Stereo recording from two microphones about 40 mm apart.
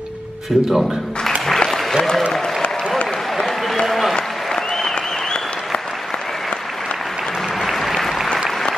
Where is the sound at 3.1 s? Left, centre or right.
Centre.